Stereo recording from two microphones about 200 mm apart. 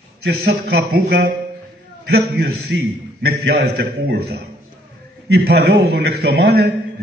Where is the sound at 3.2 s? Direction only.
55° right (ahead or behind).